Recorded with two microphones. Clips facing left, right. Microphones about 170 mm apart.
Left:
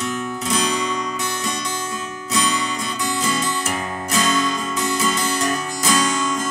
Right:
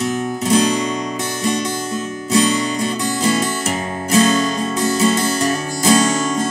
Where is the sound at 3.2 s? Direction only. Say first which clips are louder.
Right 6 dB; 30° right (ahead or behind).